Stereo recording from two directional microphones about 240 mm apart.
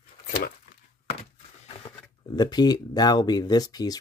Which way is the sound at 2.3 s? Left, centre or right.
Centre.